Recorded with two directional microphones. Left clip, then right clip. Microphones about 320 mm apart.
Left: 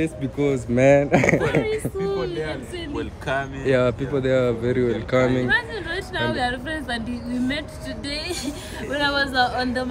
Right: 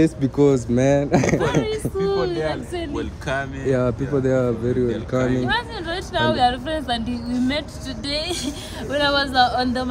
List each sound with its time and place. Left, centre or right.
0.0 s a woman's voice: centre
2.0 s a woman's voice: centre
3.0 s speech: centre
5.5 s a woman's voice: centre